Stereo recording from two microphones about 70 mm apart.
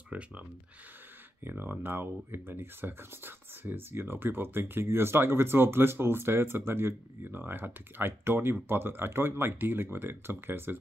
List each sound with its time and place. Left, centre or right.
0.1 s speech: right
1.4 s speech: right